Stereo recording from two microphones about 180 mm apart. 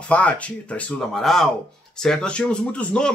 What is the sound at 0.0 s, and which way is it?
Speech, 5° left (ahead or behind).